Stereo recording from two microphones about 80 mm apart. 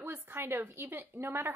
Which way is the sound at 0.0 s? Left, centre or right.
Right.